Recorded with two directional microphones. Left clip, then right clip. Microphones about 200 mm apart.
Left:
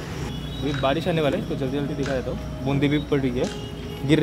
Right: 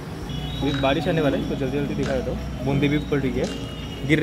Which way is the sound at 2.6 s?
15° left (ahead or behind).